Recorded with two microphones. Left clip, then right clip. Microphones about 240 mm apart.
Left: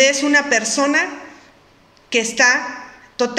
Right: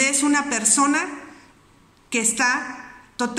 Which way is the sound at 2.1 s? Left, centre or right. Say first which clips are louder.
Left 6 dB; centre.